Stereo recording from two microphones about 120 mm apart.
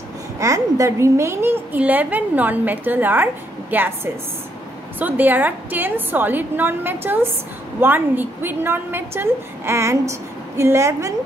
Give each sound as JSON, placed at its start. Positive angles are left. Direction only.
{"t": 0.4, "sound": "a woman's voice", "side_deg": -25}